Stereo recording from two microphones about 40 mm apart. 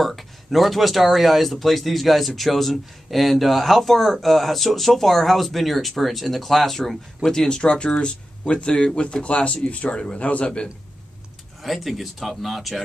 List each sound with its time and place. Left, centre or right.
0.0 s speech: centre; by 10.7 s left
11.6 s speech: centre